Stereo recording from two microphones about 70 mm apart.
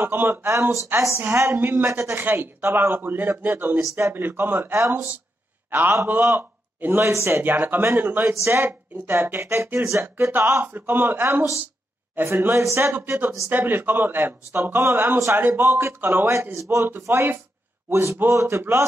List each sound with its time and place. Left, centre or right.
0.0 s speech: right
2.2 s a man's voice: right
13.5 s speech: right